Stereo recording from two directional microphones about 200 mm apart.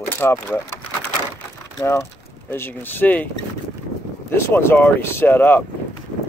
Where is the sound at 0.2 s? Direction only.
15° left (ahead or behind).